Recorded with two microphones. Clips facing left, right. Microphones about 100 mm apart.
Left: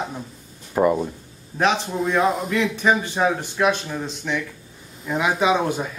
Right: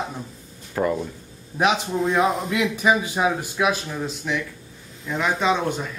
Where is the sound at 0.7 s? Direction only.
20° left (ahead or behind).